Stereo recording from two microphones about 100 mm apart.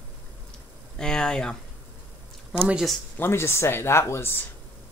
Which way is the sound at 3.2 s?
25° left (ahead or behind).